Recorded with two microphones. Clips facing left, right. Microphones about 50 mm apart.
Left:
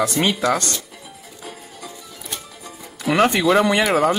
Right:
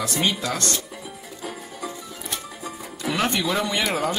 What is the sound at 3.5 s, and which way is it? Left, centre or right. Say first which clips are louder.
Speech: left 8 dB; left.